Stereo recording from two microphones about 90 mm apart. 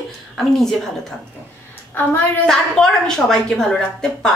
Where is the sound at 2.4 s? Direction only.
5° left (ahead or behind).